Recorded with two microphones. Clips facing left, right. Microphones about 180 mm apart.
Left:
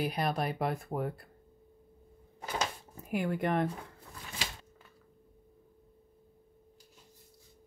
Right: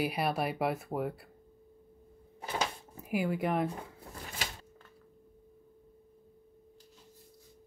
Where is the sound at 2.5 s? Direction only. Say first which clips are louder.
Right 1 dB; 5° right (ahead or behind).